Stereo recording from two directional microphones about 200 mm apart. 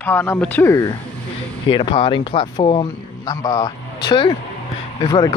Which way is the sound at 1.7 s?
25° left (ahead or behind).